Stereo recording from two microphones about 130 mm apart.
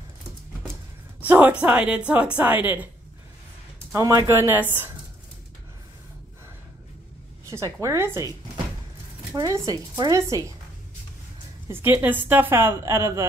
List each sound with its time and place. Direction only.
1.2 s a woman's voice: 15° right (ahead or behind)
3.9 s speech: 25° right (ahead or behind)
7.8 s speech: 20° right (ahead or behind)
9.3 s speech: 25° right (ahead or behind)
11.7 s a woman's voice: 15° right (ahead or behind)